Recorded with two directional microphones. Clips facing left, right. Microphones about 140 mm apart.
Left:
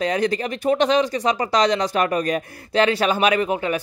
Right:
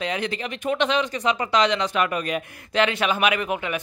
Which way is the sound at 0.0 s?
40° left (ahead or behind).